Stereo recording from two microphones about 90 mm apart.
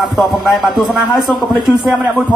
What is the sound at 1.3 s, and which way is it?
Speech, 55° right (ahead or behind).